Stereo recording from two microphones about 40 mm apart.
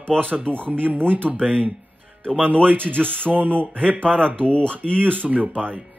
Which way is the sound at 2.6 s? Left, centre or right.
Right.